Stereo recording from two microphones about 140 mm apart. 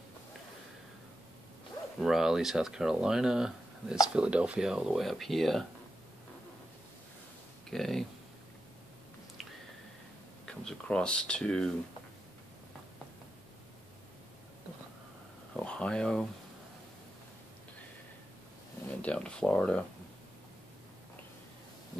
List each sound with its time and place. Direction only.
2.0 s speech: 5° right (ahead or behind)
7.7 s speech: centre (ahead or behind)
9.4 s squish: centre (ahead or behind)
10.4 s speech: 5° left (ahead or behind)
15.5 s a sound: 5° left (ahead or behind)
18.9 s speech: 10° left (ahead or behind)